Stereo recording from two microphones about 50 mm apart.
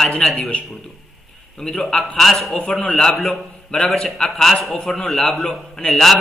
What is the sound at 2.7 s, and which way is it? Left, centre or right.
A man's voice, centre.